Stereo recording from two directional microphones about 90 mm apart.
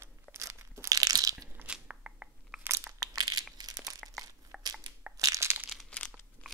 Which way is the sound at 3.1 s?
50° right (ahead or behind).